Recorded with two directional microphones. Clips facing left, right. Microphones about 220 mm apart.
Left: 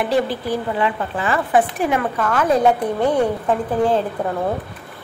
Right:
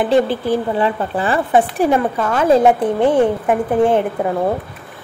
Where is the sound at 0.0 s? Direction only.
25° right (ahead or behind).